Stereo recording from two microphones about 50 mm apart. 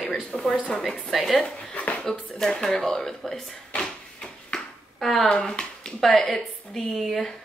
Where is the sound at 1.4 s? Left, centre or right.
Left.